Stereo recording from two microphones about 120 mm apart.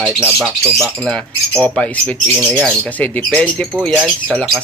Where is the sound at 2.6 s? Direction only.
10° left (ahead or behind).